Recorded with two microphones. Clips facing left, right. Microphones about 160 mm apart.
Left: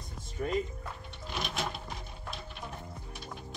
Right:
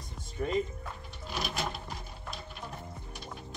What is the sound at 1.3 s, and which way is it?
Music, centre (ahead or behind).